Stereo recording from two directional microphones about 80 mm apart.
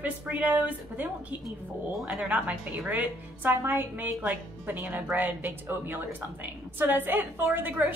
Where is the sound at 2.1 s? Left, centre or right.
Centre.